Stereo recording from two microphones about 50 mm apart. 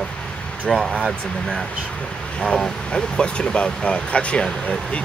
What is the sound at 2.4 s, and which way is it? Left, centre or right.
Speech, centre.